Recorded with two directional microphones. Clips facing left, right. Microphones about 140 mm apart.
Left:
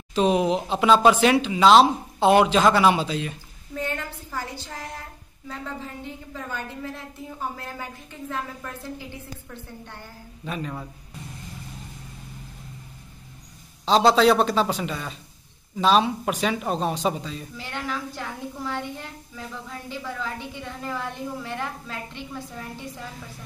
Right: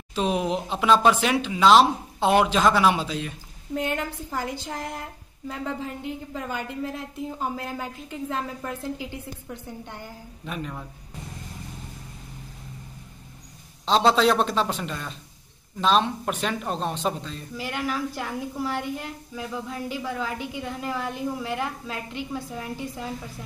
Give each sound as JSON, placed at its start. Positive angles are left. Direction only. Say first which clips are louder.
{"t": 0.1, "sound": "speech", "louder": "left 4 dB", "side_deg": 0}
{"t": 3.8, "sound": "a child's voice", "louder": "right 1 dB", "side_deg": -15}
{"t": 7.2, "sound": "a child's voice", "louder": "right 2 dB", "side_deg": -20}
{"t": 10.4, "sound": "speech", "louder": "left 2 dB", "side_deg": 0}
{"t": 13.8, "sound": "speech", "louder": "left 2 dB", "side_deg": 0}
{"t": 17.6, "sound": "a child's voice", "louder": "right 5 dB", "side_deg": -10}